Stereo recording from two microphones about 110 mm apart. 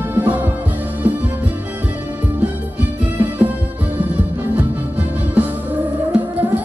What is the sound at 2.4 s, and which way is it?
Music, 15° right (ahead or behind).